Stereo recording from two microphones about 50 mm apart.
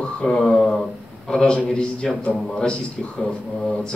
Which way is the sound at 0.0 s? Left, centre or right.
Centre.